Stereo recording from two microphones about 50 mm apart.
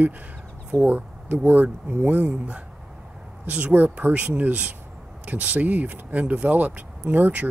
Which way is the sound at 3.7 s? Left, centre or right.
Right.